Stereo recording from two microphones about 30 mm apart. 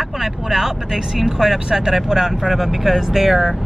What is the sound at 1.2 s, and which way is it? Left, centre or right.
Speech, centre.